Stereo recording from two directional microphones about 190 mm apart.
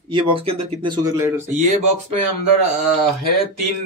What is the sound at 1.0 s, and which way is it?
Speech, 15° right (ahead or behind).